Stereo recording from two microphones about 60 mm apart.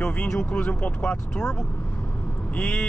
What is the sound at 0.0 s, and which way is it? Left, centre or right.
Speech, left.